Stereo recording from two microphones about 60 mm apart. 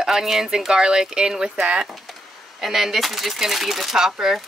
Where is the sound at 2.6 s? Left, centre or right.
Centre.